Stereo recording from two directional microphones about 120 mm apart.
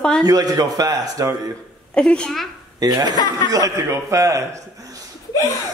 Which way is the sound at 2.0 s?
5° left (ahead or behind).